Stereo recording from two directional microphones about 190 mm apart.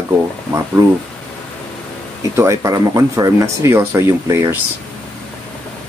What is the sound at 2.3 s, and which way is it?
Speech, 15° right (ahead or behind).